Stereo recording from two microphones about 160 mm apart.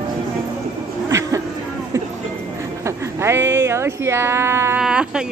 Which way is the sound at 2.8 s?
15° right (ahead or behind).